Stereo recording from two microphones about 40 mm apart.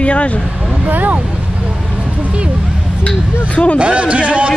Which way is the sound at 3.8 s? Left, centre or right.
Right.